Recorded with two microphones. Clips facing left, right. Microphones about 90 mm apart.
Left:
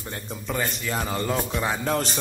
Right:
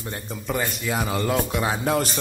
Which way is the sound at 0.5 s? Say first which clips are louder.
Right 2 dB; 10° right (ahead or behind).